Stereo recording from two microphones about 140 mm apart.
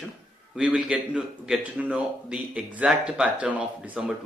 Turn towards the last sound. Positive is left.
turn(degrees=-10)  # may be behind; listen again after turning